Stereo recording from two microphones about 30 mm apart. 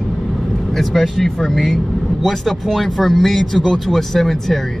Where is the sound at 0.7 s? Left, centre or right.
Centre.